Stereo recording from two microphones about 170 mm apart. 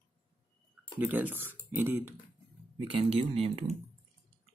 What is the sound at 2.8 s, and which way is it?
Speech, 35° right (ahead or behind).